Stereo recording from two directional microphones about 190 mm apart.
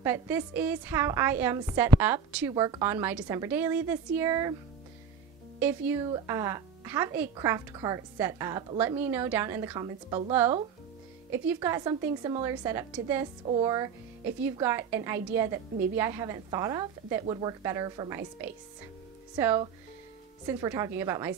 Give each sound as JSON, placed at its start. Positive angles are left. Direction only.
{"t": 0.0, "sound": "a woman's voice", "side_deg": -10}
{"t": 5.6, "sound": "a woman's voice", "side_deg": -10}
{"t": 11.3, "sound": "a woman's voice", "side_deg": -15}